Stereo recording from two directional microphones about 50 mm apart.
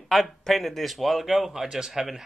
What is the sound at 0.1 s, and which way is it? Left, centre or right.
Speech, centre.